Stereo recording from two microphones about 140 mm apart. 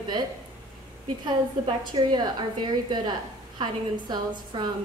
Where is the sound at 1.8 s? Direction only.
30° right (ahead or behind).